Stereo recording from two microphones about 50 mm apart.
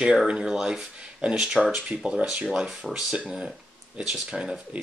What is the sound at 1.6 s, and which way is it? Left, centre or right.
Speech, centre.